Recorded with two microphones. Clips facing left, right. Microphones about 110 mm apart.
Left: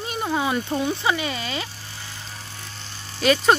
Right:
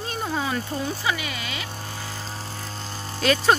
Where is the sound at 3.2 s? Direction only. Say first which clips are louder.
Left 2 dB; 5° left (ahead or behind).